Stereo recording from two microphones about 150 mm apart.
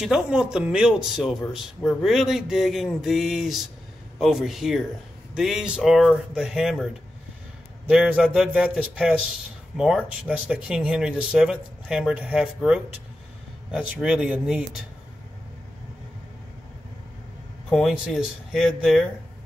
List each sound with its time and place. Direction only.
0.0 s speech: 5° right (ahead or behind)
7.9 s speech: 5° right (ahead or behind)
17.6 s speech: centre (ahead or behind)